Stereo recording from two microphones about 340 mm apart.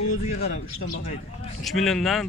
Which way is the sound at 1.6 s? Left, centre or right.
Centre.